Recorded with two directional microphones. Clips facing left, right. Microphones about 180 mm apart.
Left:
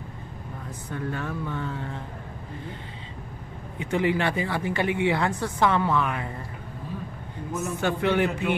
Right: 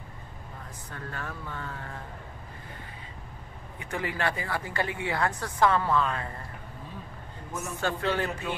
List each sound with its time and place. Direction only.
0.9 s speech: 15° left (ahead or behind)
3.8 s a woman's voice: 20° left (ahead or behind)
7.8 s speech: 15° left (ahead or behind)